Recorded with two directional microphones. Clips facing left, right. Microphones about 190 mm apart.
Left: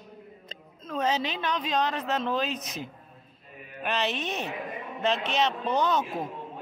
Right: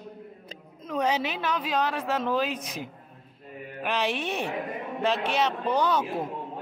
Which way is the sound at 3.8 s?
10° right (ahead or behind).